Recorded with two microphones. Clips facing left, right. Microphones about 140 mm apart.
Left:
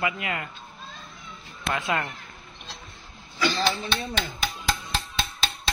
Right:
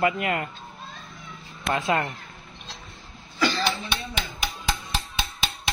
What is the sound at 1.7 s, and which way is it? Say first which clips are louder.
Speech: right 3 dB; 30° right (ahead or behind).